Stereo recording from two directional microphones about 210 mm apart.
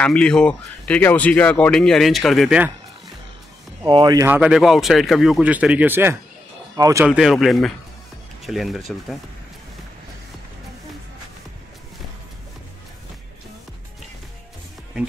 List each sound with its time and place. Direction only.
0.0 s speech: 5° left (ahead or behind)
3.8 s speech: 20° right (ahead or behind)
7.1 s speech: centre (ahead or behind)